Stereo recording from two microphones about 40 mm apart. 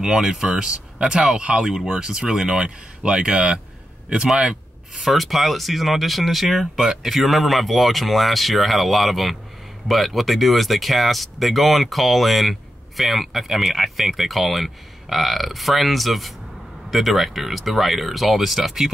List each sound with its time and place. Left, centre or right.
0.0 s speech: centre
5.0 s speech: centre